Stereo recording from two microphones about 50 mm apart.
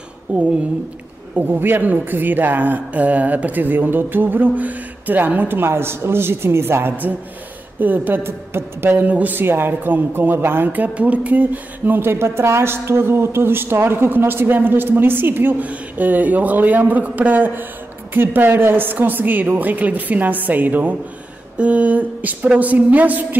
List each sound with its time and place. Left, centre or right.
0.3 s speech: right
1.3 s speech: right
5.6 s speech: right
7.8 s speech: right
8.2 s speech: right
9.0 s speech: right
12.1 s speech: right
15.6 s speech: right